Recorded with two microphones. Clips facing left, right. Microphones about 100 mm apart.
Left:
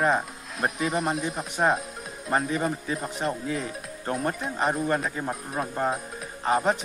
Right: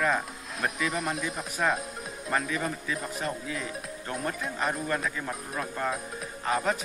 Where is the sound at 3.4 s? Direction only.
40° left (ahead or behind).